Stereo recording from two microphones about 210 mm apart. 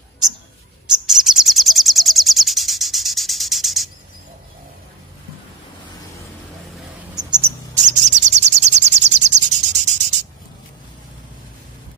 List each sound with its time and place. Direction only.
1.0 s bird: centre (ahead or behind)
7.2 s cricket: 20° right (ahead or behind)
7.8 s bird: 35° right (ahead or behind)